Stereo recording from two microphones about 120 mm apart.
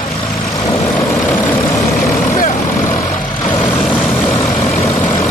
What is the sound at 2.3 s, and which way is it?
Vehicle, 90° left.